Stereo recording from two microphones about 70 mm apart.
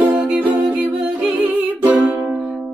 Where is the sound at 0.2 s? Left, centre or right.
Right.